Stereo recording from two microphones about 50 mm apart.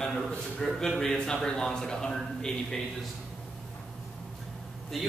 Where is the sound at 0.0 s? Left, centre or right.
Centre.